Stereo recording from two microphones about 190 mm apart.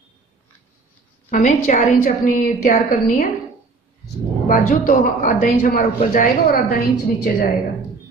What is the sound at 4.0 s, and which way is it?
A woman's voice, 45° left (ahead or behind).